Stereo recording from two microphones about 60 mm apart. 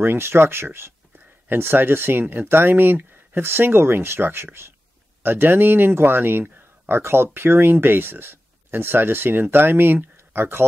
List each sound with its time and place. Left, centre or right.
0.0 s speech: right